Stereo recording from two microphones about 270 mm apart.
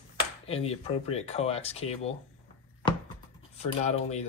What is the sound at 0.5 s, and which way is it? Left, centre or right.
Speech, left.